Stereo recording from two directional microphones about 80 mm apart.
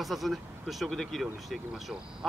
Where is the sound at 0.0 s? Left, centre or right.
Centre.